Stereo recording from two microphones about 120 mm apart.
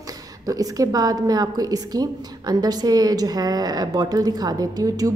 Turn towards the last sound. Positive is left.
turn(degrees=-30)  # may be behind; listen again after turning